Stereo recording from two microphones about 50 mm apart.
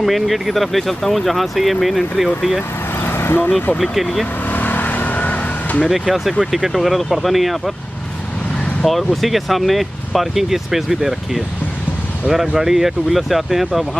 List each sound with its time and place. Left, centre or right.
0.0 s speech: centre
3.0 s vehicle: left
3.7 s speech: centre
4.5 s vehicle: left
5.9 s speech: centre
8.8 s speech: centre